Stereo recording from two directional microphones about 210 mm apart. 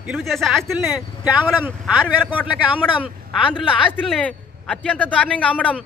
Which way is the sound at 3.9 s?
5° left (ahead or behind).